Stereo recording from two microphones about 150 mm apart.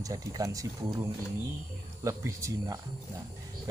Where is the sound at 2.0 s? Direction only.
20° right (ahead or behind).